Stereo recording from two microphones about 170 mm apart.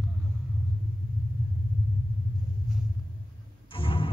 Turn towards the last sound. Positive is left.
turn(degrees=30)  # may be behind; listen again after turning